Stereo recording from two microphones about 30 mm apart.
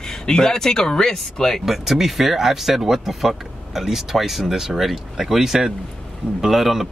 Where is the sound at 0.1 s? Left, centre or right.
Centre.